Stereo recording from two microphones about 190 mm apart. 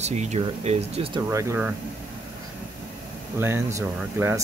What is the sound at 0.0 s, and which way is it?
Speech, 35° right (ahead or behind).